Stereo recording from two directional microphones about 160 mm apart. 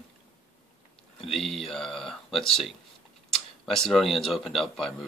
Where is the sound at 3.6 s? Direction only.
Centre (ahead or behind).